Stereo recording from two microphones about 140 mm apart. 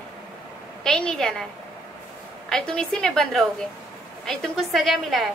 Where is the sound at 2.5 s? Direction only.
5° left (ahead or behind).